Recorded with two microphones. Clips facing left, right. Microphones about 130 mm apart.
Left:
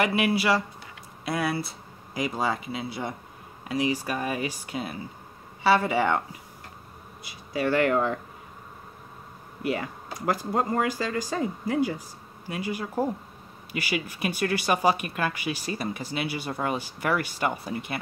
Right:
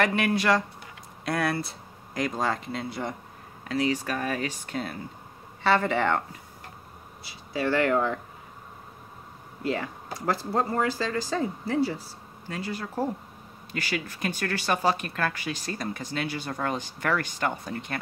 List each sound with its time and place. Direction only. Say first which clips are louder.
0.0 s speech: even; 10° left (ahead or behind)
7.2 s speech: left 1 dB; 15° left (ahead or behind)
9.6 s speech: even; 15° left (ahead or behind)